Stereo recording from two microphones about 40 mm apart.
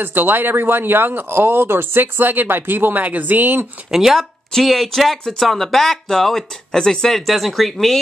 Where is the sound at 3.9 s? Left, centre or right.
Centre.